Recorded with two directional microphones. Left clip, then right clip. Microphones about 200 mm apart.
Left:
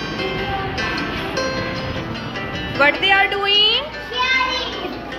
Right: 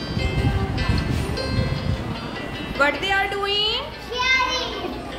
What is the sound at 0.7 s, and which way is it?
Music, 50° left (ahead or behind).